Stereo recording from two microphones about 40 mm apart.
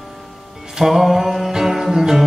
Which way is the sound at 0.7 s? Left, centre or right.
Centre.